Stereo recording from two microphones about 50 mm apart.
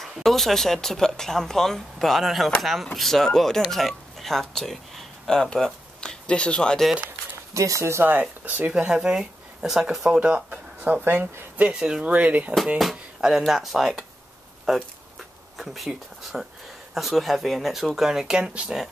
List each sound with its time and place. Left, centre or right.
0.0 s speech: centre
7.5 s speech: right
8.0 s speech: right
8.7 s speech: centre
10.2 s speech: right
11.8 s speech: centre
12.1 s speech: right
12.9 s speech: centre
14.7 s a sound: centre
16.9 s speech: centre; by 18.8 s right